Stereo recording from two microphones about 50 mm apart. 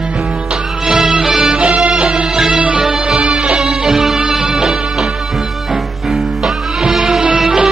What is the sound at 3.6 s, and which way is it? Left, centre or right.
Music, centre.